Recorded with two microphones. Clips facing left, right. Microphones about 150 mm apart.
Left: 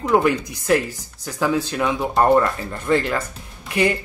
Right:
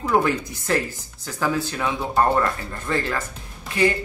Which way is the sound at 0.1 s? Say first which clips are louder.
Left 3 dB; 20° left (ahead or behind).